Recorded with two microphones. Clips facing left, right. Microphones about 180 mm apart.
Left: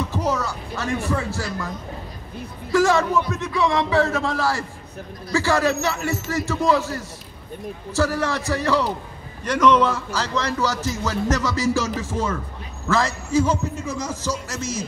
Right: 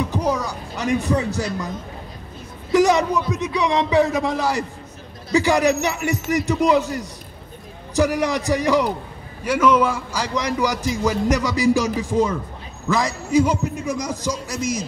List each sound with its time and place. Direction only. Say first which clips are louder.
0.0 s speech: right 2 dB; 15° right (ahead or behind)
2.7 s a man's voice: right 2 dB; 20° right (ahead or behind)